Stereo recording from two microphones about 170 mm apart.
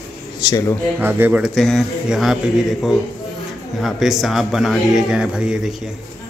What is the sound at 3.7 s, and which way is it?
Speech, centre (ahead or behind).